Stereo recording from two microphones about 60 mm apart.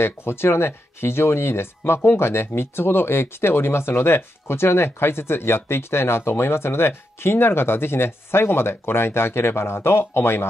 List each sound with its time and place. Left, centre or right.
0.0 s speech: left